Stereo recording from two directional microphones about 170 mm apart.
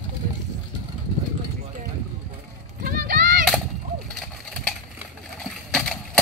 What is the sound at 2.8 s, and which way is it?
Clip-clop, 60° right (ahead or behind).